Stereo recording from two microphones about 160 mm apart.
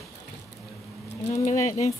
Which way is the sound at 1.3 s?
45° left (ahead or behind).